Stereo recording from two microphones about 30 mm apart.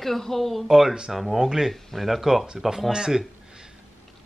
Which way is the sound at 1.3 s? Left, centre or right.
Centre.